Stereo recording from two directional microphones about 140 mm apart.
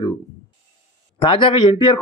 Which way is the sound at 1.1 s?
35° left (ahead or behind).